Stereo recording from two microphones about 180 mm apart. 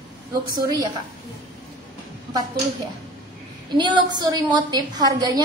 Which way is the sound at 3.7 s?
25° right (ahead or behind).